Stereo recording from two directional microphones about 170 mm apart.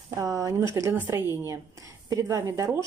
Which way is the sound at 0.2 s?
20° right (ahead or behind).